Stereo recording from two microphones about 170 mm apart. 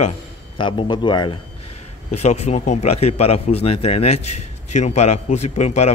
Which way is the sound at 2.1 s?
40° left (ahead or behind).